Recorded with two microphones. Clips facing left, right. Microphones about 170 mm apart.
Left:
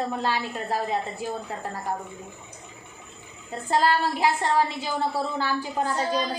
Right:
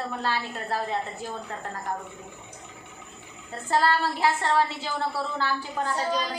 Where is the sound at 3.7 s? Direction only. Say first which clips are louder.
Left 1 dB; 15° left (ahead or behind).